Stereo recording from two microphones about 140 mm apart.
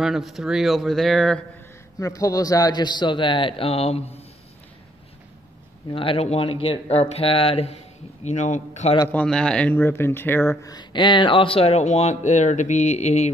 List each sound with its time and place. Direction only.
0.0 s speech: centre (ahead or behind)
2.0 s speech: 25° left (ahead or behind); by 4.1 s 45° left (ahead or behind)
5.9 s speech: 40° left (ahead or behind)
8.2 s speech: 55° left (ahead or behind)
9.1 s speech: 5° left (ahead or behind); by 13.3 s 55° left (ahead or behind)